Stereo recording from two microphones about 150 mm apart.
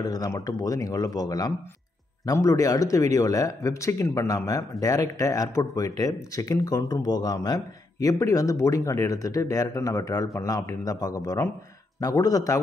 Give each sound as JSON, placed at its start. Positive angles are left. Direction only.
{"t": 0.0, "sound": "speech", "side_deg": 25}